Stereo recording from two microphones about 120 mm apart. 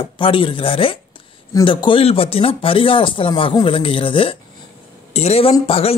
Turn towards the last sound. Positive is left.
turn(degrees=55)  # may be behind; listen again after turning